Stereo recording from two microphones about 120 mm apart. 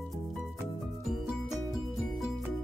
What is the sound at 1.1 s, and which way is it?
Music, centre (ahead or behind).